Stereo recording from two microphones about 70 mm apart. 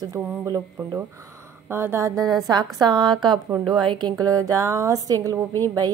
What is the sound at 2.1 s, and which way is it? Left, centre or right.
Speech, centre.